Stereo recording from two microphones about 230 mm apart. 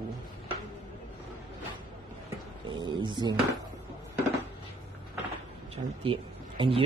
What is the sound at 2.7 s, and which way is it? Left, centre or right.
Speech, right.